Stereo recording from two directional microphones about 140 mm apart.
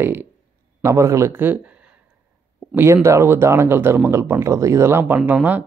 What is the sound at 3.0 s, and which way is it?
Speech, 20° right (ahead or behind).